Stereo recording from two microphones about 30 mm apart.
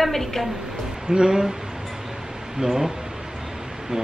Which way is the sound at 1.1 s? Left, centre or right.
Right.